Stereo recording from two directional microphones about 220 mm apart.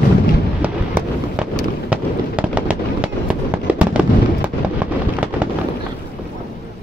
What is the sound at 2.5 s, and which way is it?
Fireworks, 5° right (ahead or behind).